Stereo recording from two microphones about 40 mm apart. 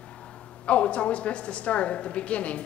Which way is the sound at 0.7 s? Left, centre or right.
Left.